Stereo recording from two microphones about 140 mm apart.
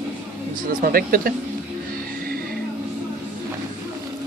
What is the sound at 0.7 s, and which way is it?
Speech, 85° right.